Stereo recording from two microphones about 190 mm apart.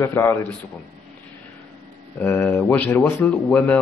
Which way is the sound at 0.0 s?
15° left (ahead or behind).